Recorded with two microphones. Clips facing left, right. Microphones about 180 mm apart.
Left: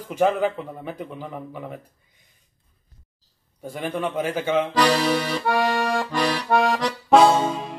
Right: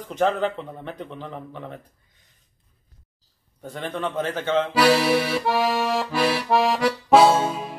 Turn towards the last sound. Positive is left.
turn(degrees=-5)  # may be behind; listen again after turning